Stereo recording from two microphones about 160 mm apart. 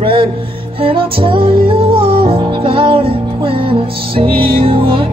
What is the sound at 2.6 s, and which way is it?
Music, 35° right (ahead or behind).